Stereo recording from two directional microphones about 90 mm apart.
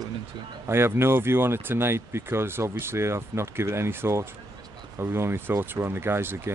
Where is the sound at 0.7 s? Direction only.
25° right (ahead or behind).